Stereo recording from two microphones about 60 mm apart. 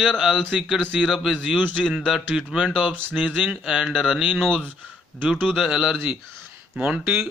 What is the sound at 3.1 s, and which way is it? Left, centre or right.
Speech, centre.